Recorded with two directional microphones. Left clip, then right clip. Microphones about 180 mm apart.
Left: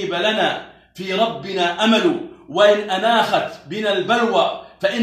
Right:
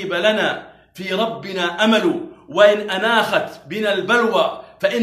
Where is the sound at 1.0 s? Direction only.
15° right (ahead or behind).